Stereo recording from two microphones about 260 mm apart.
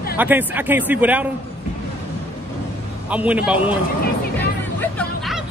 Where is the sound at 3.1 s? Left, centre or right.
Centre.